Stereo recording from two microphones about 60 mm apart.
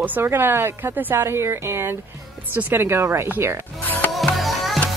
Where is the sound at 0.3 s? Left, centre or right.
Right.